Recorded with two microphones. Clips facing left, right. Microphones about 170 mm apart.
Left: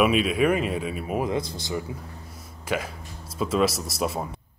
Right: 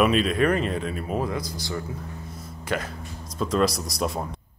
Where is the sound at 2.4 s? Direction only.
5° left (ahead or behind).